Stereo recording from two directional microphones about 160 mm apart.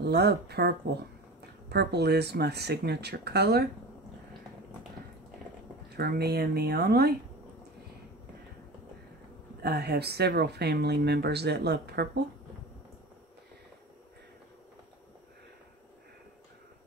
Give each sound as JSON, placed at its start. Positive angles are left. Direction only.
{"t": 0.0, "sound": "speech", "side_deg": -90}
{"t": 5.9, "sound": "speech", "side_deg": -80}
{"t": 9.6, "sound": "speech", "side_deg": -85}